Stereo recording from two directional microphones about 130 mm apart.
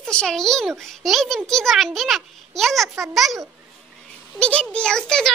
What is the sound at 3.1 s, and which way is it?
Speech, centre (ahead or behind).